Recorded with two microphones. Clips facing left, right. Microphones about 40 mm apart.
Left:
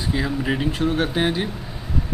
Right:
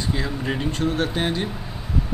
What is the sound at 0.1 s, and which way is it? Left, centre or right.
A man's voice, centre.